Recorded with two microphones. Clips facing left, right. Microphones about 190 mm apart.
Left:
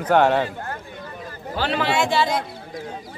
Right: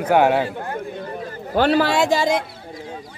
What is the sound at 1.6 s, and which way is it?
Speech, 40° right (ahead or behind).